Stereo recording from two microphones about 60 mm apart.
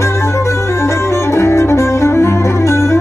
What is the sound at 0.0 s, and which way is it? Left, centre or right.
Music, left.